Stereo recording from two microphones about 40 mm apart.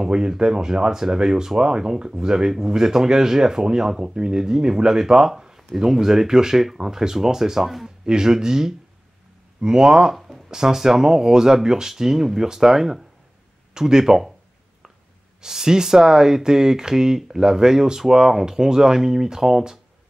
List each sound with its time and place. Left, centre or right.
0.0 s speech: centre
10.1 s a sound: centre
10.5 s speech: centre
15.4 s speech: centre